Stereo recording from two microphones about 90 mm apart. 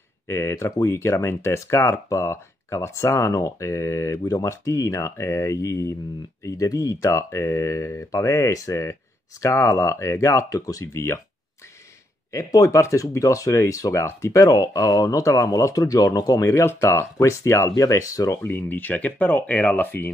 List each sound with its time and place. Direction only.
0.3 s speech: 30° left (ahead or behind)
12.3 s speech: 35° left (ahead or behind)
18.4 s speech: 25° left (ahead or behind)